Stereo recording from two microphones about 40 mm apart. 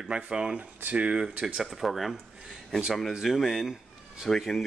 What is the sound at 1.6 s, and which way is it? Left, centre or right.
Speech, centre.